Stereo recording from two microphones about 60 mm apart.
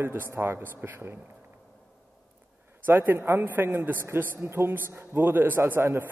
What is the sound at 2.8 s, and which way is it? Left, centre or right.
A man's voice, right.